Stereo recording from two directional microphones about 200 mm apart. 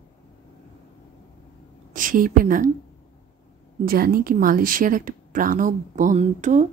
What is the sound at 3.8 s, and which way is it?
Speech, 45° right (ahead or behind).